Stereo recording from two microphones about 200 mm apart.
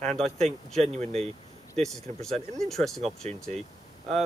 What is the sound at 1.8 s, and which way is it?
Speech, centre (ahead or behind).